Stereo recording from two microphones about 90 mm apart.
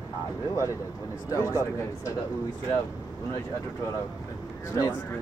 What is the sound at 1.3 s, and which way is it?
Speech, 35° left (ahead or behind).